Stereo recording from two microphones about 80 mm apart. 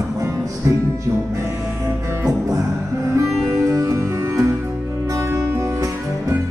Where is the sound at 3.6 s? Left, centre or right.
Right.